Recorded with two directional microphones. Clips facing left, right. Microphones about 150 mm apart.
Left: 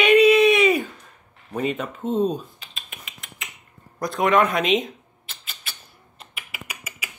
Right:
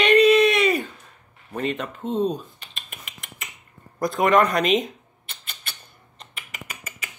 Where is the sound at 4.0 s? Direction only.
Centre (ahead or behind).